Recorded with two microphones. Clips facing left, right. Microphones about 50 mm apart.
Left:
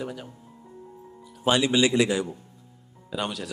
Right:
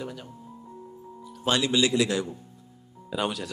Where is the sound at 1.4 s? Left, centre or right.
Centre.